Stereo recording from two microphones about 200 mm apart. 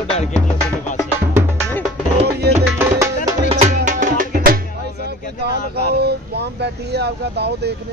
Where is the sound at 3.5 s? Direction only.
35° right (ahead or behind).